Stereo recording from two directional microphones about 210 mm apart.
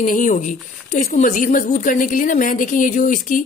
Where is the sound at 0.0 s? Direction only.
40° left (ahead or behind).